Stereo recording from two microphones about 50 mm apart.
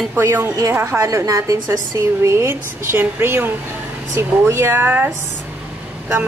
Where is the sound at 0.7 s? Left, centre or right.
Right.